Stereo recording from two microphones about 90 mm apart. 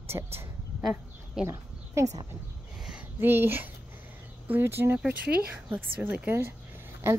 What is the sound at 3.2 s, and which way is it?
A woman's voice, 25° right (ahead or behind).